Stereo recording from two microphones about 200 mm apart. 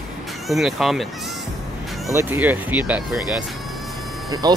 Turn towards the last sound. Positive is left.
turn(degrees=-20)  # may be behind; listen again after turning